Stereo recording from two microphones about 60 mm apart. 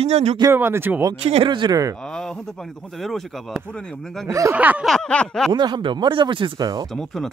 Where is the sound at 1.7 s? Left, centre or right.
Right.